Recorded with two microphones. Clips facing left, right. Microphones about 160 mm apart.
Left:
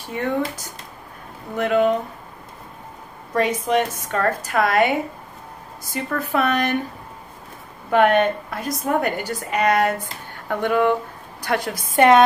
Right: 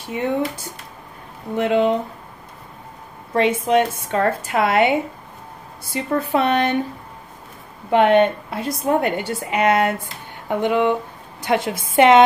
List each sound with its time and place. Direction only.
1.6 s a woman's voice: 25° right (ahead or behind)
3.3 s a woman's voice: 25° right (ahead or behind)
5.9 s a woman's voice: 30° right (ahead or behind)
7.9 s a woman's voice: 25° right (ahead or behind)